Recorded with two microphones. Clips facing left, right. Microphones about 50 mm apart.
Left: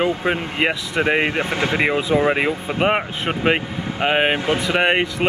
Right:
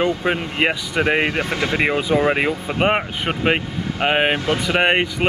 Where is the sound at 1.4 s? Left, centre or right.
Left.